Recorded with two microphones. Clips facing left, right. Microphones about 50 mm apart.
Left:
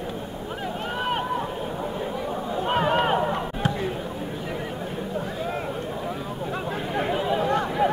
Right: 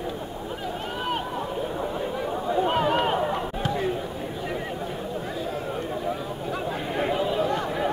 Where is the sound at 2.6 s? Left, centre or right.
Centre.